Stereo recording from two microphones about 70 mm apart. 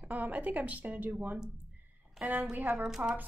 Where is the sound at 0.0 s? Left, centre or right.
Right.